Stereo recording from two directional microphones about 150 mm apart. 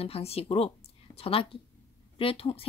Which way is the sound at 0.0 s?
40° left (ahead or behind).